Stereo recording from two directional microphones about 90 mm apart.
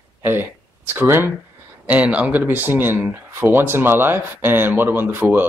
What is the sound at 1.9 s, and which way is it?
Speech, 15° right (ahead or behind).